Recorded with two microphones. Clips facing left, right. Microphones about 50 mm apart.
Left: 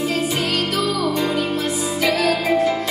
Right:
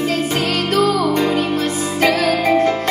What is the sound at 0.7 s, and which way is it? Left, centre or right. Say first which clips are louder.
Music: right 5 dB; right.